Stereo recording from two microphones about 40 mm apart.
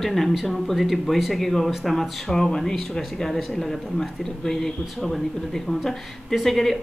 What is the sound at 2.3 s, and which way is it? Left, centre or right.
A man's voice, centre.